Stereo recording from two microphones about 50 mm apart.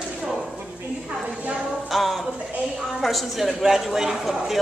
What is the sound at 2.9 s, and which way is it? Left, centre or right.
A man's voice, centre.